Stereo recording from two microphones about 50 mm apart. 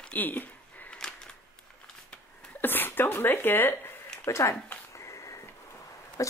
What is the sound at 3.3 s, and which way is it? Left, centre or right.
Speech, left.